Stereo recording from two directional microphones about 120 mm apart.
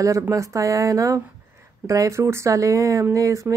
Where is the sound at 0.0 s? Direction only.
25° right (ahead or behind).